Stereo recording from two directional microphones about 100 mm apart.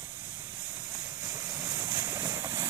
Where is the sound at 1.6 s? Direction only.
30° right (ahead or behind).